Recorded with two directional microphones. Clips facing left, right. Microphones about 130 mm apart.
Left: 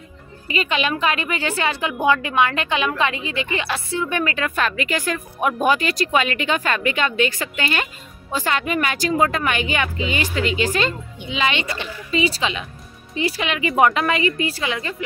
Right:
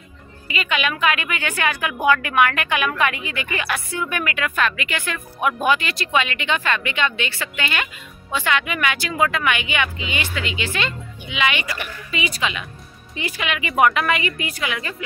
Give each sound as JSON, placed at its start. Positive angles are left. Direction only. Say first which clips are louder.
{"t": 0.5, "sound": "a woman's voice", "louder": "left 2 dB", "side_deg": 35}